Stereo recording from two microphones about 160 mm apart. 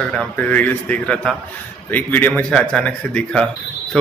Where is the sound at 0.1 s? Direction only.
5° left (ahead or behind).